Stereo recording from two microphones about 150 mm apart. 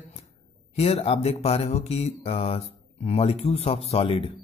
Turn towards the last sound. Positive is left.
turn(degrees=40)  # may be behind; listen again after turning